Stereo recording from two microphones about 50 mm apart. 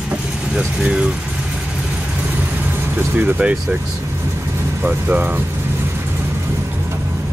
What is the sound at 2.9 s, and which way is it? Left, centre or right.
Speech, right.